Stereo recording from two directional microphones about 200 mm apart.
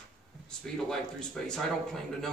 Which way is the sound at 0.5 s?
5° left (ahead or behind).